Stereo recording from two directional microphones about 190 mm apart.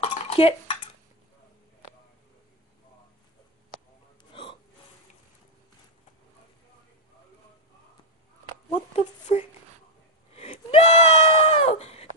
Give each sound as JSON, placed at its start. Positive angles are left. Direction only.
{"t": 0.0, "sound": "stir", "side_deg": 30}
{"t": 4.2, "sound": "gasp", "side_deg": 30}
{"t": 8.9, "sound": "a sound", "side_deg": 35}